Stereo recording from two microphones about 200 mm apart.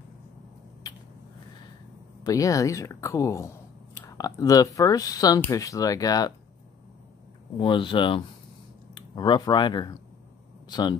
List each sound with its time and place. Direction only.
2.2 s speech: 15° left (ahead or behind)
7.5 s speech: 25° left (ahead or behind)